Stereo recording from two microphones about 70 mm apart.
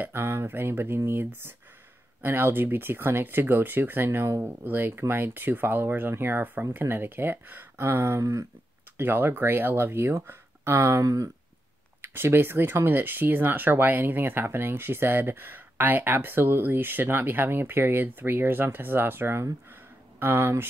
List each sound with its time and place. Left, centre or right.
0.0 s speech: right
8.9 s speech: right
12.0 s speech: right